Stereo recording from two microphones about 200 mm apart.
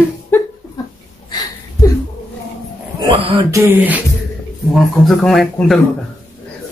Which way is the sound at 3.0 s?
25° right (ahead or behind).